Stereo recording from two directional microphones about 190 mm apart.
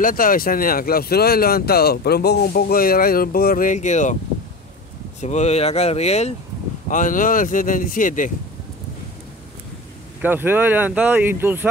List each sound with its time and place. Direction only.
0.0 s speech: 45° left (ahead or behind)
5.2 s speech: 35° left (ahead or behind)
10.2 s speech: 10° right (ahead or behind)